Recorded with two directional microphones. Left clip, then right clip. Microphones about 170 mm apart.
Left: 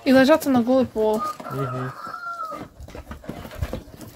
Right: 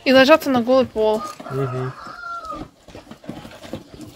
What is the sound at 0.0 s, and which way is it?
Speech, 5° left (ahead or behind).